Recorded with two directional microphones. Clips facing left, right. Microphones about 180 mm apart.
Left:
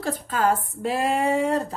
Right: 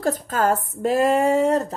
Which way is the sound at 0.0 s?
45° right (ahead or behind).